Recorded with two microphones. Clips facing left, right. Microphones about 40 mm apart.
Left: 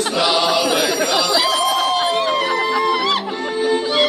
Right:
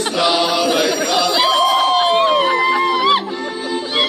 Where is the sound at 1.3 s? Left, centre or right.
Right.